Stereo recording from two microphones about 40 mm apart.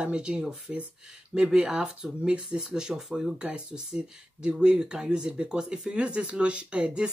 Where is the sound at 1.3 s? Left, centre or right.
Centre.